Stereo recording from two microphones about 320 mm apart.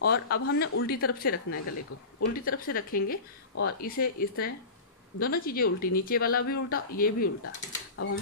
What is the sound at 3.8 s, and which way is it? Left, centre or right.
Speech, left.